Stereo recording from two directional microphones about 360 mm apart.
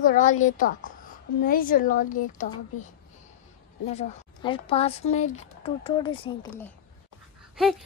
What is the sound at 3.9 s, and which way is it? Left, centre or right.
Speech, centre.